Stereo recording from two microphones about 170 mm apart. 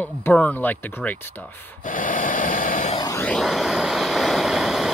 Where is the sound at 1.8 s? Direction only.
55° left (ahead or behind).